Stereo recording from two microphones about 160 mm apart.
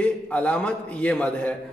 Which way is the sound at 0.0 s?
10° left (ahead or behind).